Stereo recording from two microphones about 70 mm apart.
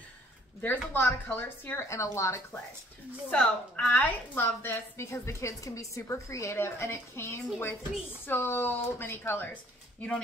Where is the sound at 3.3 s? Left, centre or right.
Left.